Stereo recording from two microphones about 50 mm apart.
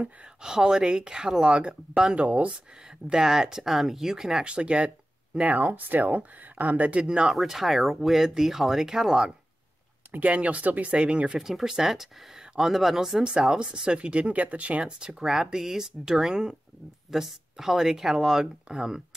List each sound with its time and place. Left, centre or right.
0.0 s speech: centre
2.7 s speech: centre
7.1 s speech: centre
7.3 s speech: centre
10.1 s speech: right
11.3 s speech: centre
13.2 s speech: centre
15.0 s speech: centre